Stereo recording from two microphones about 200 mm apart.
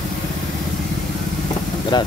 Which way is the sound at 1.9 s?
20° left (ahead or behind).